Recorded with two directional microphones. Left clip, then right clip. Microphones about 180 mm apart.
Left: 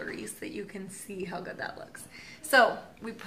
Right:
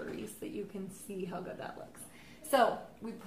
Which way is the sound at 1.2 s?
30° left (ahead or behind).